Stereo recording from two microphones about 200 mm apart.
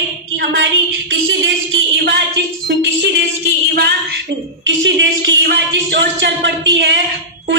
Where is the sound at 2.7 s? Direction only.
60° right (ahead or behind).